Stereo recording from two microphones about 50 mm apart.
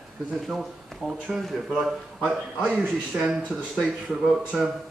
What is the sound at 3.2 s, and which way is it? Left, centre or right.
Speech, centre.